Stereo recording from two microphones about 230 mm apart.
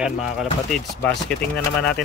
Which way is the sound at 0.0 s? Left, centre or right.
Centre.